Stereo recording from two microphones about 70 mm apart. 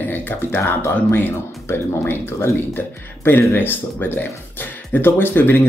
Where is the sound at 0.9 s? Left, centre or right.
Left.